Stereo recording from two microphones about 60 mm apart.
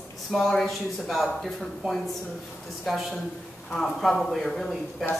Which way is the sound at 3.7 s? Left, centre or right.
Centre.